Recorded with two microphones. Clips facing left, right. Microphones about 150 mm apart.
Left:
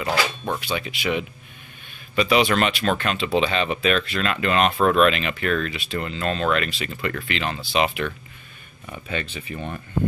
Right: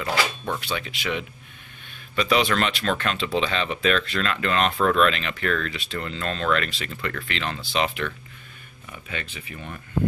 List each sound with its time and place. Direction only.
0.7 s speech: 10° left (ahead or behind)
9.1 s speech: 30° left (ahead or behind)